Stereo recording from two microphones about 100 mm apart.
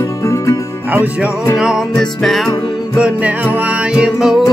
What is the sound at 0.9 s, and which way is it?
Music, 15° right (ahead or behind).